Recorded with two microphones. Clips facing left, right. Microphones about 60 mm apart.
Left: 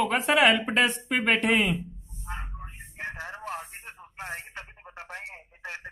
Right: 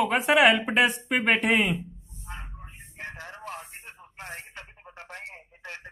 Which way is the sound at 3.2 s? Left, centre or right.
Left.